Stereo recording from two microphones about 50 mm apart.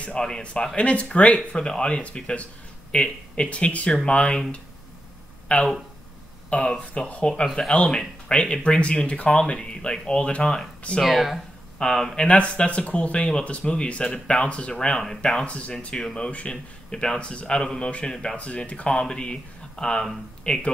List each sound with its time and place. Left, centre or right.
0.4 s speech: left
5.5 s speech: left
11.1 s speech: centre
11.8 s speech: centre